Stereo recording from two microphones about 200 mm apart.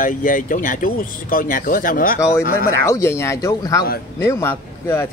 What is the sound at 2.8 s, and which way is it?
Speech, 15° left (ahead or behind).